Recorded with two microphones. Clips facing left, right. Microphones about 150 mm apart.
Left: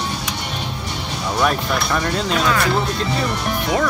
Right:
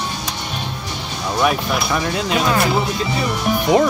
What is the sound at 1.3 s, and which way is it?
Speech, 5° right (ahead or behind).